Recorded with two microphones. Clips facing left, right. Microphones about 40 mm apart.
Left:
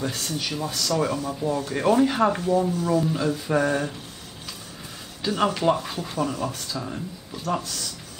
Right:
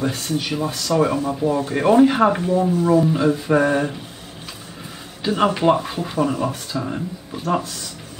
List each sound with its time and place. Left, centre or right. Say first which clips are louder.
0.0 s speech: right 6 dB; centre
5.2 s speech: right 5 dB; centre